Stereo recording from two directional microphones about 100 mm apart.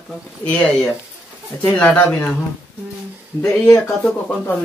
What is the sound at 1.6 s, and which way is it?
Speech, 10° left (ahead or behind).